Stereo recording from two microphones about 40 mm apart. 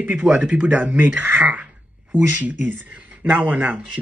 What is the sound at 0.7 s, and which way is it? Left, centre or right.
Speech, right.